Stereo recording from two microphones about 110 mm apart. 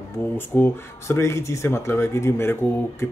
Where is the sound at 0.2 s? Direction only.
20° left (ahead or behind).